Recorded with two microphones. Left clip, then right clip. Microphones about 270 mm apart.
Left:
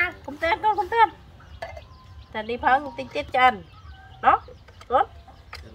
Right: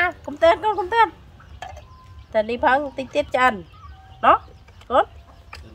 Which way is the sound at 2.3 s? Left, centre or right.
Right.